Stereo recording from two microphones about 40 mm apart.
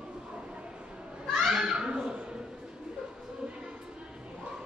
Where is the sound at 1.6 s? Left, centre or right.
Right.